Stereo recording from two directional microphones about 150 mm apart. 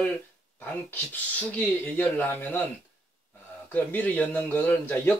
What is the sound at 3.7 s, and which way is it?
Speech, 10° left (ahead or behind).